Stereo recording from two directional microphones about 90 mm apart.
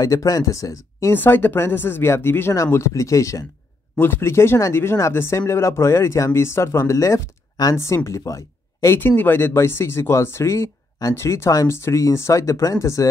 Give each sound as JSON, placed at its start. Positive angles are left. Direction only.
{"t": 0.0, "sound": "speech", "side_deg": 40}
{"t": 1.1, "sound": "speech", "side_deg": 20}
{"t": 8.8, "sound": "speech", "side_deg": 25}